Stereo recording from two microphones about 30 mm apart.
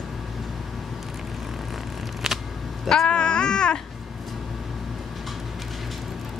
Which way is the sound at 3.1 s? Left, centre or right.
Left.